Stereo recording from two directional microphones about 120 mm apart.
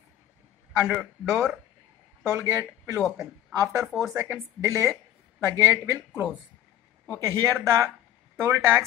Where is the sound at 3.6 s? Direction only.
25° right (ahead or behind).